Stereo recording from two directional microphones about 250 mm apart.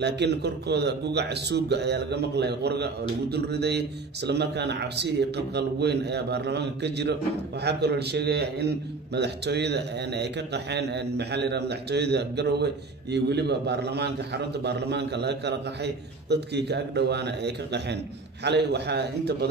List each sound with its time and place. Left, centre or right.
0.0 s a man's voice: right